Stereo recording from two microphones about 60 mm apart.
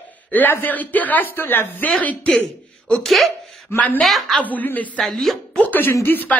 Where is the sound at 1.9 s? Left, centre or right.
Centre.